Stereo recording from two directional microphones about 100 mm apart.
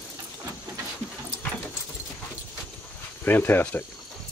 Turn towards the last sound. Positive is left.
turn(degrees=20)  # may be behind; listen again after turning